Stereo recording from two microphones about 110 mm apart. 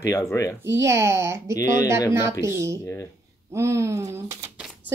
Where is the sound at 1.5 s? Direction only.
35° left (ahead or behind).